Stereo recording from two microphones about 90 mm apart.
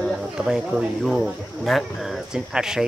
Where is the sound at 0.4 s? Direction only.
5° right (ahead or behind).